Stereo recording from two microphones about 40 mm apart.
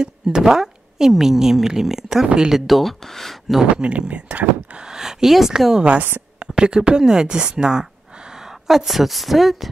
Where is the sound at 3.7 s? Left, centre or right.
Right.